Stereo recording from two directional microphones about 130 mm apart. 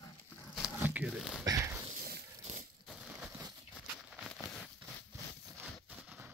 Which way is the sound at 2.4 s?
65° right (ahead or behind).